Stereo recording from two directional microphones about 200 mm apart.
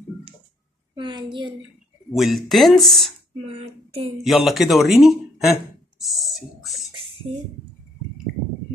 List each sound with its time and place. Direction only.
0.9 s a woman's voice: 25° right (ahead or behind)
2.1 s speech: centre (ahead or behind)
3.4 s child singing: 30° right (ahead or behind)
4.2 s speech: centre (ahead or behind)
6.1 s a sound: centre (ahead or behind)
7.3 s speech: 30° right (ahead or behind)